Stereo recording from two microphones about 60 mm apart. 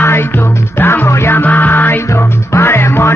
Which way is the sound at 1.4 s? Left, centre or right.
Left.